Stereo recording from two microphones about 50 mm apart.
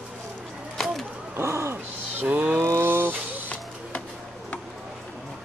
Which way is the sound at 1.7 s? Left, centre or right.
Right.